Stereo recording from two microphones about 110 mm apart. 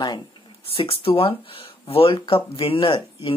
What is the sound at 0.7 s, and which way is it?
Speech, 55° left (ahead or behind).